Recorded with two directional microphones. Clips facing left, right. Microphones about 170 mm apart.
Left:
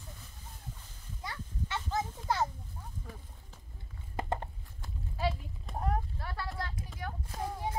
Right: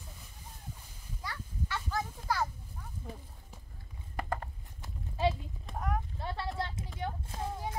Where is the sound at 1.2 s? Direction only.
20° left (ahead or behind).